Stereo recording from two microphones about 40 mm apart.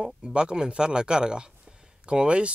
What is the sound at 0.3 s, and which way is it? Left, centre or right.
Speech, right.